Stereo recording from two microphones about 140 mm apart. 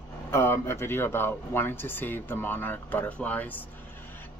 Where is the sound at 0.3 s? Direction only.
15° left (ahead or behind).